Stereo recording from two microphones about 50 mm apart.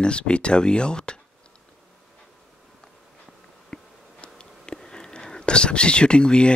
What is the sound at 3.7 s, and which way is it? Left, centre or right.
Insect, left.